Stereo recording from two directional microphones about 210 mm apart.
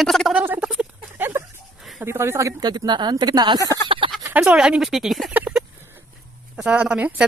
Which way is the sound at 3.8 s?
25° right (ahead or behind).